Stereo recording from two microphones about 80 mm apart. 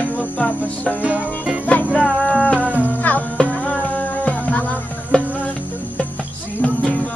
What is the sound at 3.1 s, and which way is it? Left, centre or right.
Music, left.